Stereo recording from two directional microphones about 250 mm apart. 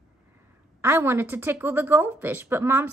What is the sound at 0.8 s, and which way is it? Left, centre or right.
A woman's voice, centre.